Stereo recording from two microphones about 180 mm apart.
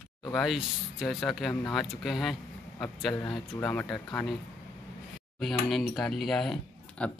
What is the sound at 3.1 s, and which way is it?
Speech, 25° left (ahead or behind).